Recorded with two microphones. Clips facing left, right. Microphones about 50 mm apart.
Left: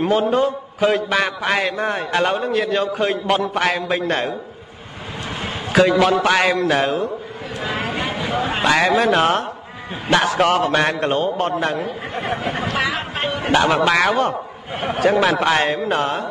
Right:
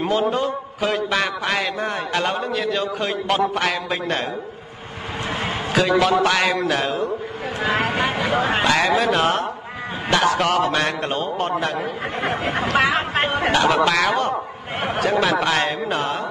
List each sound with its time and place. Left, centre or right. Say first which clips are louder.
0.0 s a man's voice: left 3 dB; centre
5.7 s a man's voice: left 3 dB; centre
8.3 s a sound: even; right
8.6 s a man's voice: left 5 dB; centre
12.7 s speech: right 5 dB; right
13.2 s a sound: right 2 dB; right
13.5 s a man's voice: left 3 dB; centre